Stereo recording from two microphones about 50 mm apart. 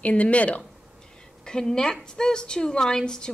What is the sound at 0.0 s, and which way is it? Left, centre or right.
Speech, left.